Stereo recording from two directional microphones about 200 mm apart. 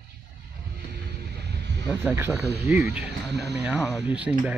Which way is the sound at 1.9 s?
10° right (ahead or behind).